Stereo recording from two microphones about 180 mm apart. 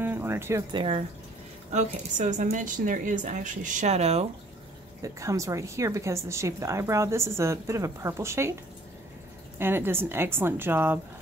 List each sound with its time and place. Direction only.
0.0 s a sound: 10° right (ahead or behind)
0.7 s speech: 30° right (ahead or behind)
1.7 s a woman's voice: 40° right (ahead or behind)
5.0 s a woman's voice: 15° right (ahead or behind)
9.6 s a woman's voice: 10° right (ahead or behind)